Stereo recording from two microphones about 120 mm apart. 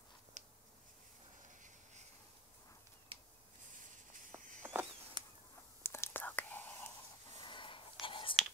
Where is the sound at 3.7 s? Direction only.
90° right.